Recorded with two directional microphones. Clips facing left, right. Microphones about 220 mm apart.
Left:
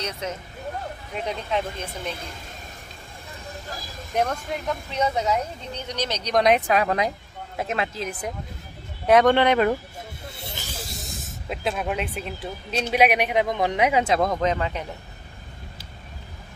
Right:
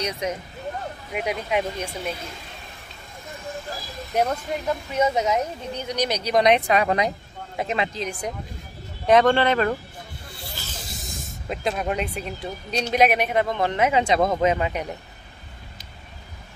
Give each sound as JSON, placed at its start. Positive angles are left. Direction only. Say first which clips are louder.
{"t": 0.0, "sound": "speech", "louder": "right 3 dB", "side_deg": -15}
{"t": 4.1, "sound": "speech", "louder": "right 2 dB", "side_deg": -5}
{"t": 10.3, "sound": "snake", "louder": "left 1 dB", "side_deg": 20}
{"t": 10.9, "sound": "speech", "louder": "even", "side_deg": 0}
{"t": 14.4, "sound": "speech", "louder": "right 3 dB", "side_deg": -10}